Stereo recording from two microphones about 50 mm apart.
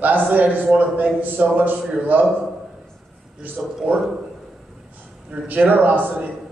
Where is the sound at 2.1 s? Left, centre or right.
Right.